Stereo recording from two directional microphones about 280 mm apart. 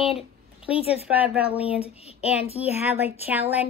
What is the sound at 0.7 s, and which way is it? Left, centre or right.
A woman's voice, centre.